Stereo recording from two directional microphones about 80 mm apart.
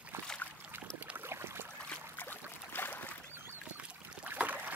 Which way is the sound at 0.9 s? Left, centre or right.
Right.